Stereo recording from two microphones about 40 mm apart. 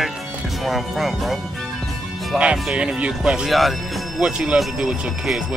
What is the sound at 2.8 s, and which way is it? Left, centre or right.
Speech, right.